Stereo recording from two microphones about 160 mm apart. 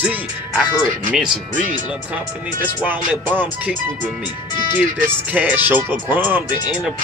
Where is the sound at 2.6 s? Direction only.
10° right (ahead or behind).